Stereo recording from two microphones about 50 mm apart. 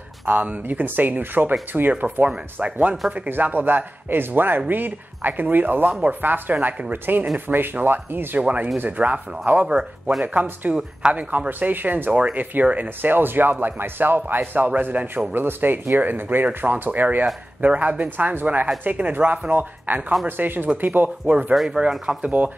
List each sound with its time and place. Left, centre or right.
0.3 s speech: right
3.3 s speech: right
5.9 s speech: right
6.2 s speech: right
8.4 s speech: right
10.2 s speech: right
12.1 s speech: right
13.1 s speech: right
15.4 s speech: right
22.1 s speech: centre